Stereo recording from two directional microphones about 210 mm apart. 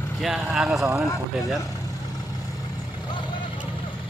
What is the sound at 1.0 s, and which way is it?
Speech, 15° left (ahead or behind).